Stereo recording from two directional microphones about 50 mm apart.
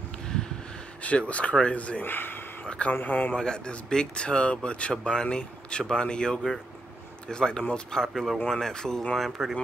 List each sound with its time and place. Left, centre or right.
1.0 s speech: left
2.0 s speech: left
2.6 s a sound: left
2.9 s speech: left
3.3 s speech: centre
9.1 s speech: centre